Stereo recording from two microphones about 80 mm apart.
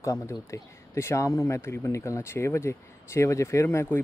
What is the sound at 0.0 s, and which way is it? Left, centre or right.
Speech, left.